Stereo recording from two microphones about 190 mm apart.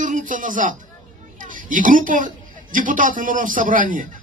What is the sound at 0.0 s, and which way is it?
A man's voice, 45° right (ahead or behind).